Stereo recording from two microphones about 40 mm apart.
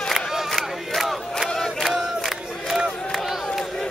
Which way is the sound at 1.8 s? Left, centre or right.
Centre.